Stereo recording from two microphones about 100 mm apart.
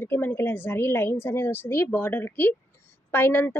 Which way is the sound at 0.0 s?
20° left (ahead or behind).